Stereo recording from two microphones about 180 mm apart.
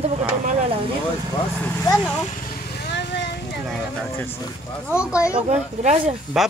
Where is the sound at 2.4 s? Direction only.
55° left (ahead or behind); by 3.3 s 70° left (ahead or behind).